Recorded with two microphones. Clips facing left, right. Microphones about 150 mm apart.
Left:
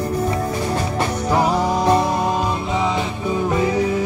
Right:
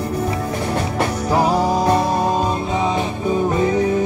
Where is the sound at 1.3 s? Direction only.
30° right (ahead or behind).